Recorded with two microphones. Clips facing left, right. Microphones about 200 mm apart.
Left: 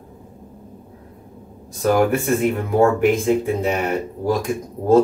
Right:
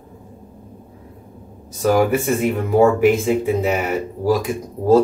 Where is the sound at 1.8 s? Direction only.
Centre (ahead or behind).